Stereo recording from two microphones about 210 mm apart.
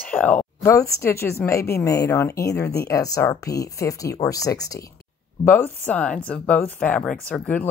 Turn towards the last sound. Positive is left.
turn(degrees=5)  # may be behind; listen again after turning